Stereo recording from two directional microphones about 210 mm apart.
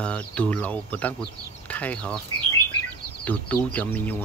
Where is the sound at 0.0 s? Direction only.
5° left (ahead or behind).